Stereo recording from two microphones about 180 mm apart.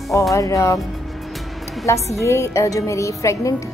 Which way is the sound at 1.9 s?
15° left (ahead or behind).